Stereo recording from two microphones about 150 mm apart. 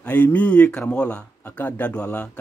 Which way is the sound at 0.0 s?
10° left (ahead or behind).